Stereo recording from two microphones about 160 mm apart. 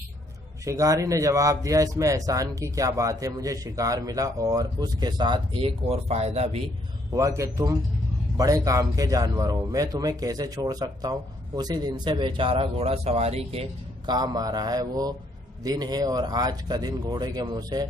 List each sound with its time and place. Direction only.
0.7 s speech: 20° right (ahead or behind); by 6.6 s 40° right (ahead or behind)
7.2 s speech: 20° right (ahead or behind); by 13.7 s 40° right (ahead or behind)
14.0 s speech: 25° right (ahead or behind)